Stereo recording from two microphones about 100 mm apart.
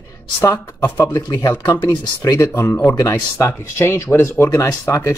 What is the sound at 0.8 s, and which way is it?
Speech, 25° left (ahead or behind).